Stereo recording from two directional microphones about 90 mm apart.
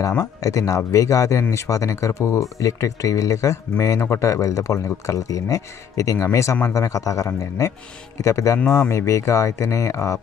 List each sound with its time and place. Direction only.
0.2 s speech: 40° left (ahead or behind)